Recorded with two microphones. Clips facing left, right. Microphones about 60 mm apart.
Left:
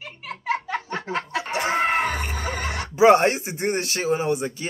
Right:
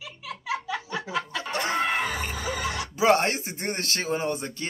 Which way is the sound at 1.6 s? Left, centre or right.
Left.